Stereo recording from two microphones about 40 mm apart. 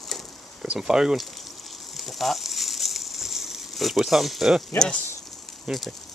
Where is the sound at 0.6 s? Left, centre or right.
Centre.